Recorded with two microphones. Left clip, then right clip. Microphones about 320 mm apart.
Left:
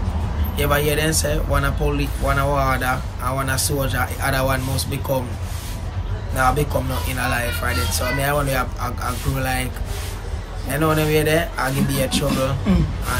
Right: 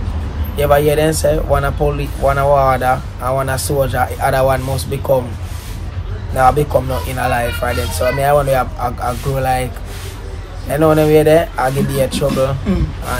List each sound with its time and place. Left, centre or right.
0.6 s speech: centre
6.3 s speech: centre
10.7 s speech: centre
12.7 s speech: centre